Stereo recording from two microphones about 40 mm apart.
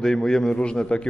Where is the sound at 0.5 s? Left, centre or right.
Left.